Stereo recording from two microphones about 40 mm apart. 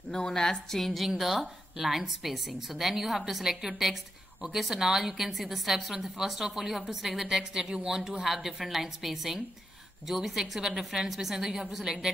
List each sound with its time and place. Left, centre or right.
0.1 s a woman's voice: centre
0.7 s a woman's voice: centre